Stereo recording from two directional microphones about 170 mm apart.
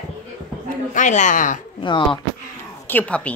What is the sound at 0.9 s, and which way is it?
Speech, 45° left (ahead or behind).